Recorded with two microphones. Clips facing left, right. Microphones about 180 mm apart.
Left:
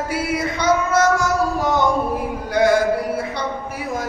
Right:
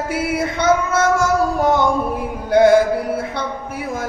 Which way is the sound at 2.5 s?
55° right (ahead or behind).